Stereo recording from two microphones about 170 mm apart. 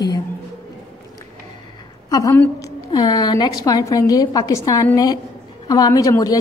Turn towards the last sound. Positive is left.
turn(degrees=20)  # may be behind; listen again after turning